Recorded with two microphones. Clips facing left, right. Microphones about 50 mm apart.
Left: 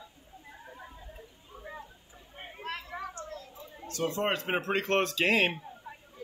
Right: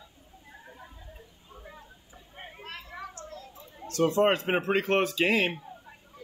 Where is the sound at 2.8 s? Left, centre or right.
Left.